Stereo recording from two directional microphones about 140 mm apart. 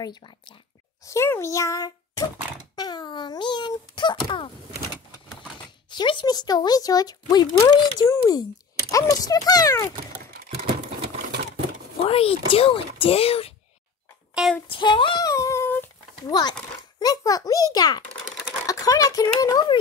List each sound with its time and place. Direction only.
0.0 s a child's voice: 30° left (ahead or behind)
1.0 s a child's voice: 20° left (ahead or behind)
5.9 s speech: 35° left (ahead or behind)
12.1 s speech: 40° left (ahead or behind)
14.7 s a child's voice: 35° left (ahead or behind)
15.2 s a sound: 20° left (ahead or behind)
16.2 s speech: 30° left (ahead or behind)